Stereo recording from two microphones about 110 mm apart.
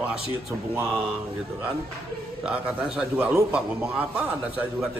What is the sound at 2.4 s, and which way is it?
A man's voice, 10° right (ahead or behind).